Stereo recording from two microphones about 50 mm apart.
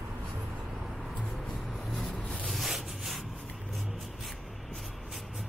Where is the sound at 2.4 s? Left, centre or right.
Centre.